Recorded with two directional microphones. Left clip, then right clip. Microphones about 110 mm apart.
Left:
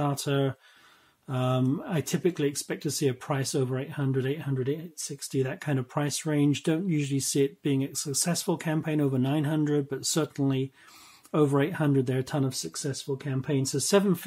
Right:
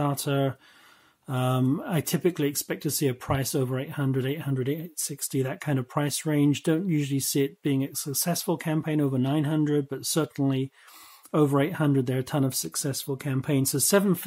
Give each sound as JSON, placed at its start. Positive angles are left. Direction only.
{"t": 0.0, "sound": "speech", "side_deg": -35}
{"t": 1.3, "sound": "speech", "side_deg": -45}
{"t": 4.6, "sound": "speech", "side_deg": -60}
{"t": 12.4, "sound": "speech", "side_deg": -60}